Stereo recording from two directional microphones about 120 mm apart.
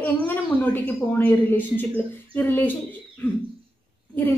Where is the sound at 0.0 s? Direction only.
15° left (ahead or behind).